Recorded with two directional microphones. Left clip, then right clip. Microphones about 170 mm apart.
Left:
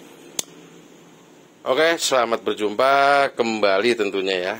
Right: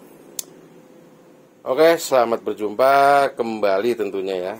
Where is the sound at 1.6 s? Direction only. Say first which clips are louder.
Right 3 dB; 10° right (ahead or behind).